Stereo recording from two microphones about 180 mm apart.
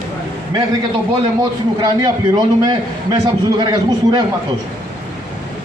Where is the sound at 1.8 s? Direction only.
25° right (ahead or behind).